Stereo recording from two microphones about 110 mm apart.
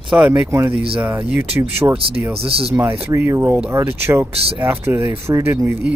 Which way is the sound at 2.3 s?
60° right (ahead or behind).